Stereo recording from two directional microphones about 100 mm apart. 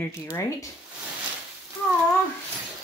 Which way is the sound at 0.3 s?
35° left (ahead or behind).